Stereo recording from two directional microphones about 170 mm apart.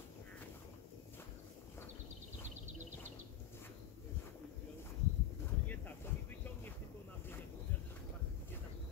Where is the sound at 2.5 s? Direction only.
45° right (ahead or behind).